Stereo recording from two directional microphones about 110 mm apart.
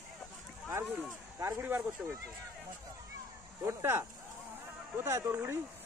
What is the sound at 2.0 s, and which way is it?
Speech, 10° right (ahead or behind).